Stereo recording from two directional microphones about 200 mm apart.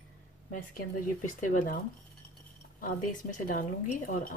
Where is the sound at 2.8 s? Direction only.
40° left (ahead or behind).